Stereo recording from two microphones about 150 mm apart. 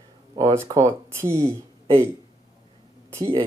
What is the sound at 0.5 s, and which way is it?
Speech, 25° right (ahead or behind).